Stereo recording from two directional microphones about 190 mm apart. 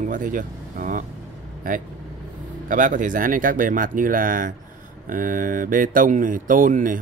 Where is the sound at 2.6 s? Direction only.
45° right (ahead or behind).